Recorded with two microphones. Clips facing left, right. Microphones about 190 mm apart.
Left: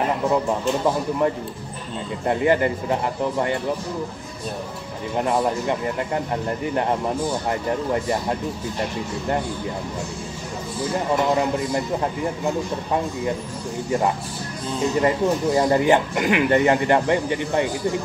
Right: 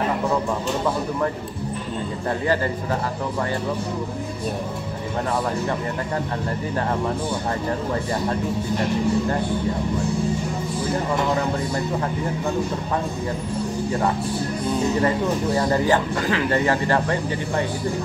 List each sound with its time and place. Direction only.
2.2 s speech: 20° left (ahead or behind)
15.0 s speech: 20° left (ahead or behind)